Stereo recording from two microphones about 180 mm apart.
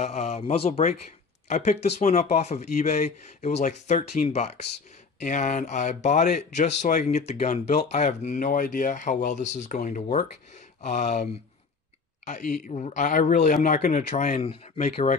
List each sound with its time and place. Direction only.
0.0 s speech: 40° left (ahead or behind)
12.3 s speech: 45° left (ahead or behind)